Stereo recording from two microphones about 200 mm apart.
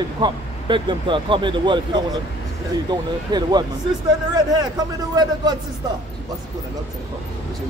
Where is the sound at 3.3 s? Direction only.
20° right (ahead or behind).